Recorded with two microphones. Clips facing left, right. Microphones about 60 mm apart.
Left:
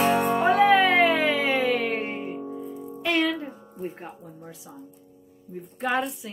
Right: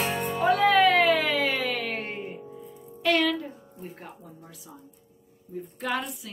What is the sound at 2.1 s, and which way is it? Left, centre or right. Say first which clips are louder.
Music: left 3 dB; centre.